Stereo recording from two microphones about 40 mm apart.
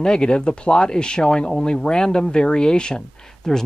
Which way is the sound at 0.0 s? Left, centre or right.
Centre.